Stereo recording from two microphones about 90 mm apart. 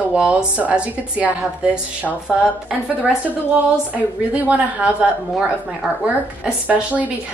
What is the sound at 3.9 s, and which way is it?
A woman's voice, 15° right (ahead or behind).